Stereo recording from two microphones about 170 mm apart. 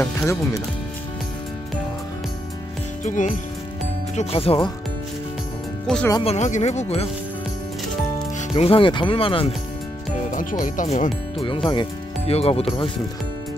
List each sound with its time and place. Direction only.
0.0 s speech: 15° left (ahead or behind)
3.0 s speech: 45° left (ahead or behind)
4.2 s speech: 35° left (ahead or behind)
5.9 s speech: centre (ahead or behind)
6.2 s speech: 45° left (ahead or behind)
8.4 s speech: 35° left (ahead or behind)
10.3 s speech: 50° left (ahead or behind)
11.7 s speech: 30° left (ahead or behind)